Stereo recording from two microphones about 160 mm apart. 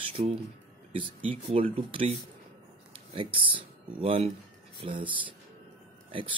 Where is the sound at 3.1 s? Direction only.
30° right (ahead or behind).